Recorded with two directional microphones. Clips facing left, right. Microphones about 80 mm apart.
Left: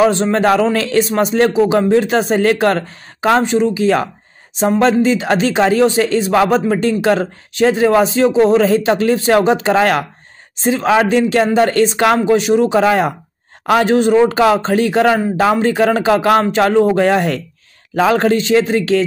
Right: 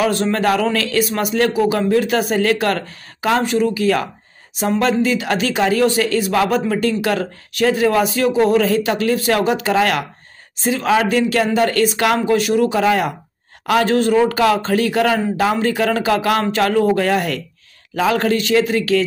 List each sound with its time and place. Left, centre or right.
0.0 s speech: left